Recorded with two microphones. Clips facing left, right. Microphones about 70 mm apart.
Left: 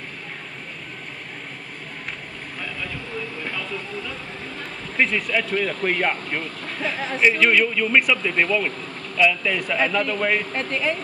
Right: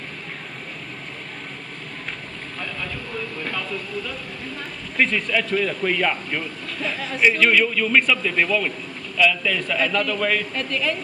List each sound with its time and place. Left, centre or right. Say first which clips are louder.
4.9 s a man's voice: right 1 dB; centre
5.8 s speech: right 1 dB; left
7.2 s a man's voice: even; centre; by 11.0 s left